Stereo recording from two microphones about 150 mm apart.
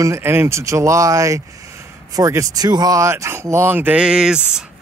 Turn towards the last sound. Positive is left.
turn(degrees=-5)  # may be behind; listen again after turning